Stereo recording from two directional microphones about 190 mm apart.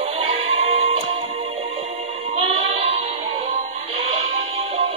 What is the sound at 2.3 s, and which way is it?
Music, 30° right (ahead or behind).